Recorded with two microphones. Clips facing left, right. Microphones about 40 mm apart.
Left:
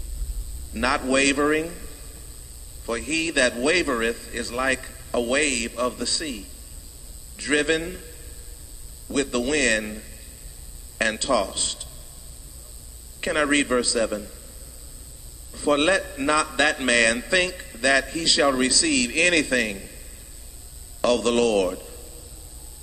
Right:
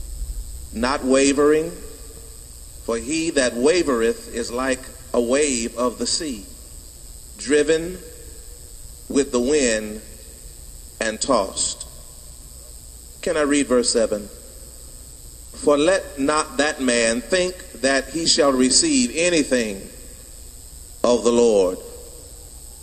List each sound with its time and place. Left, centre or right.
0.7 s a man's voice: left
2.8 s a man's voice: left
13.2 s a man's voice: left
15.5 s a man's voice: left